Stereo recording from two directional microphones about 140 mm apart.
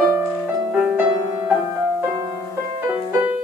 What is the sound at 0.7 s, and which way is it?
Music, 10° right (ahead or behind).